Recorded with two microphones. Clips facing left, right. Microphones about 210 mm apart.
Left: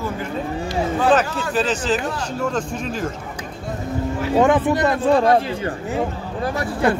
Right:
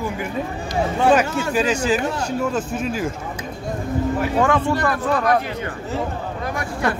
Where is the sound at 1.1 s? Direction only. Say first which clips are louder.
Right 2 dB; 10° right (ahead or behind).